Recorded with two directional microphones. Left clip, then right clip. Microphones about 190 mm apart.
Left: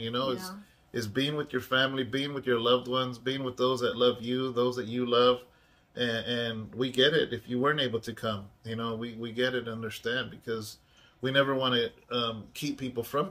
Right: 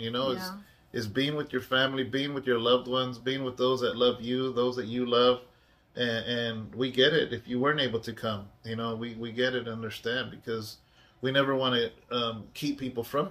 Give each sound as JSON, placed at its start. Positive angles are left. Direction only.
{"t": 0.0, "sound": "speech", "side_deg": 20}